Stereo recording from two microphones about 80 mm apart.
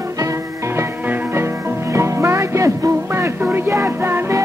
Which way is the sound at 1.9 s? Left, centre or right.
Right.